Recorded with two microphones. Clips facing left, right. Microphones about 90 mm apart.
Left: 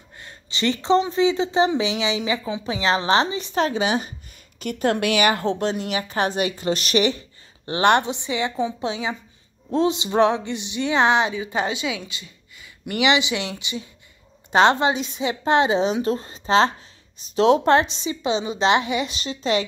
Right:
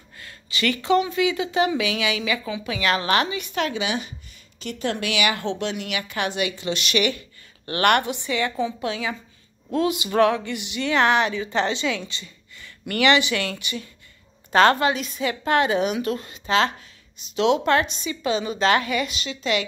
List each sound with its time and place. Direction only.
0.2 s a woman's voice: 25° left (ahead or behind)
9.7 s a sound: 25° left (ahead or behind)
14.5 s speech: 20° left (ahead or behind)
19.1 s a woman's voice: 35° left (ahead or behind)